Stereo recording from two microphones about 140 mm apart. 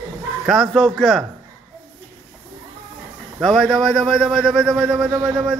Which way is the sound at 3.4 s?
Centre (ahead or behind).